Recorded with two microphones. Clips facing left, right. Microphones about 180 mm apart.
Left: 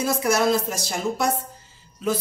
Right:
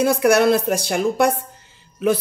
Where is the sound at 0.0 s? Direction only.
65° right (ahead or behind).